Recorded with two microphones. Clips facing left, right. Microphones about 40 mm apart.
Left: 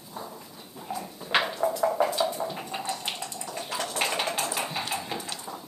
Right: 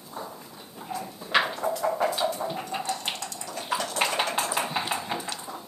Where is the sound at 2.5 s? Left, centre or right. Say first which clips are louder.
Right 2 dB; centre.